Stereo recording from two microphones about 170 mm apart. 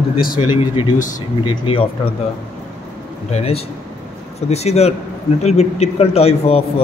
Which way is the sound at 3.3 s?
35° left (ahead or behind).